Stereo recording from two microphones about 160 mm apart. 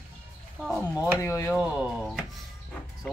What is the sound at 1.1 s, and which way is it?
Speech, 15° left (ahead or behind).